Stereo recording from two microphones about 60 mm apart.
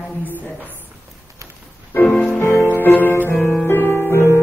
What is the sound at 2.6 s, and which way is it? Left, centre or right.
Music, left.